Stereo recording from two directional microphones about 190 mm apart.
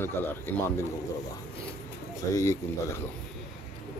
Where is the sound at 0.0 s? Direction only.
10° left (ahead or behind).